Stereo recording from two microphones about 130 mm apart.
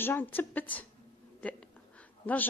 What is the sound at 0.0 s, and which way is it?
A woman's voice, 15° left (ahead or behind).